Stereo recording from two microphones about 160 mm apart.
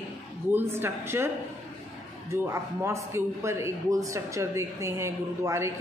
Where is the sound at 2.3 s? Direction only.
15° right (ahead or behind).